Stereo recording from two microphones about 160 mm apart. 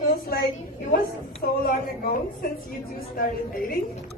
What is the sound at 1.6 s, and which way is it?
Speech, 60° left (ahead or behind).